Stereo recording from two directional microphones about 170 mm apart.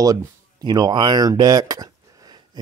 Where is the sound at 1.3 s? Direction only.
20° right (ahead or behind).